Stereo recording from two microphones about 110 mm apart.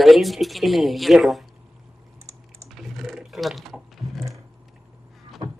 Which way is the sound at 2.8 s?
Centre (ahead or behind).